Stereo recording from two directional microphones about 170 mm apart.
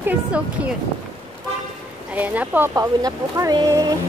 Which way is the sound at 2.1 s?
10° right (ahead or behind).